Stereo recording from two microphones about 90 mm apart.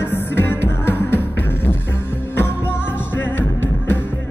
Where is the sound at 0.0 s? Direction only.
25° left (ahead or behind).